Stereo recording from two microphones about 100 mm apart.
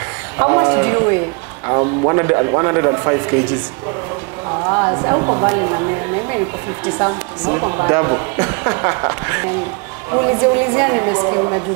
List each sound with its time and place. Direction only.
0.4 s speech: 30° right (ahead or behind)
4.6 s speech: 35° right (ahead or behind)